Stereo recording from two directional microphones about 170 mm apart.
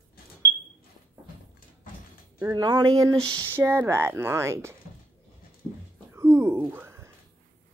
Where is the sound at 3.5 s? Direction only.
15° right (ahead or behind).